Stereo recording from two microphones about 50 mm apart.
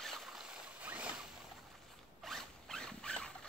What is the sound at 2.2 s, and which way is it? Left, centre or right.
Zipper, centre.